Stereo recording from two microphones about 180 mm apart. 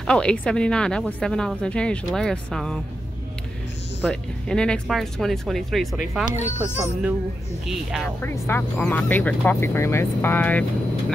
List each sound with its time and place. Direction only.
0.0 s a woman's voice: 5° left (ahead or behind)
4.0 s a woman's voice: 5° left (ahead or behind)
6.3 s speech: 40° left (ahead or behind)
7.6 s a woman's voice: centre (ahead or behind)
8.2 s speech: 10° left (ahead or behind)